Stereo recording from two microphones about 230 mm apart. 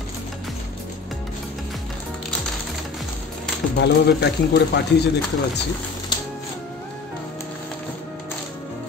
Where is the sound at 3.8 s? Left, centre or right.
Left.